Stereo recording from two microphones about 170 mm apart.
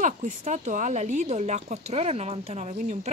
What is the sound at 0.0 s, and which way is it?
Speech, 45° right (ahead or behind).